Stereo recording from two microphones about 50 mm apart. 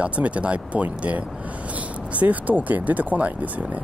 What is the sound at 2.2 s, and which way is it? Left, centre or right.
Speech, right.